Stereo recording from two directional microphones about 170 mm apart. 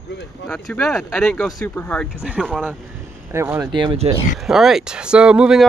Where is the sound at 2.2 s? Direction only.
5° right (ahead or behind).